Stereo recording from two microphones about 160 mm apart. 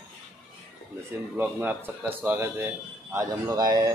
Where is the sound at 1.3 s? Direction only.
15° right (ahead or behind).